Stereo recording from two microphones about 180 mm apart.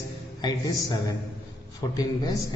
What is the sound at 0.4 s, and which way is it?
A man's voice, 20° left (ahead or behind).